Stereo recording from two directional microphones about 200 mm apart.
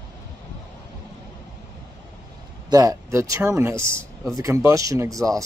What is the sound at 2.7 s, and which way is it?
Speech, 20° right (ahead or behind).